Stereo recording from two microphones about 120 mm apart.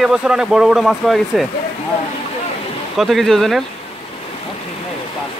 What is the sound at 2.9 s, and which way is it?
Speech, centre (ahead or behind).